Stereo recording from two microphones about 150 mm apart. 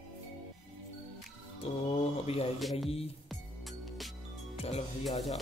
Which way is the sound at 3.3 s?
Centre (ahead or behind).